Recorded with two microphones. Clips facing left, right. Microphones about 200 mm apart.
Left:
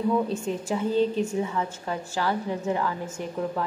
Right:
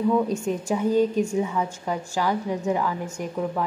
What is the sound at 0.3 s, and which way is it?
A woman's voice, 15° right (ahead or behind).